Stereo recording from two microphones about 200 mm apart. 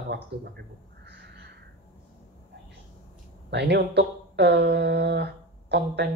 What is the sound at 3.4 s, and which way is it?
Speech, 60° right (ahead or behind).